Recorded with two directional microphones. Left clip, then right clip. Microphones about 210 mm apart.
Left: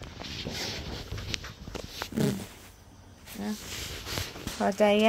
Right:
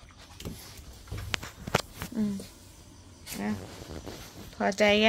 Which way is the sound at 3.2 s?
Centre (ahead or behind).